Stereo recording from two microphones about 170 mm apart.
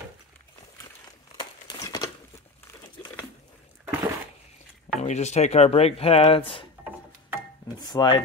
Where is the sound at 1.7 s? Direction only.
20° left (ahead or behind).